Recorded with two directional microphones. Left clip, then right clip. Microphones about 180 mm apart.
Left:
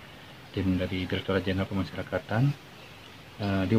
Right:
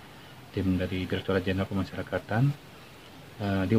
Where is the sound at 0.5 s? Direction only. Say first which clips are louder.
Even; 20° right (ahead or behind).